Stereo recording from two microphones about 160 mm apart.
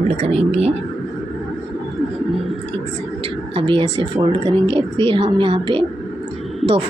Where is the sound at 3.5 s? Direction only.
30° right (ahead or behind).